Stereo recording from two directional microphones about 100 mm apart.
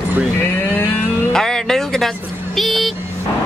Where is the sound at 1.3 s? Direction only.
5° left (ahead or behind).